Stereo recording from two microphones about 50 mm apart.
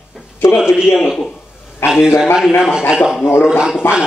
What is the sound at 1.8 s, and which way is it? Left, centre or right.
Speech, left.